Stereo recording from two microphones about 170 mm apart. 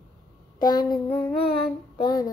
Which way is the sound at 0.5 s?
25° left (ahead or behind).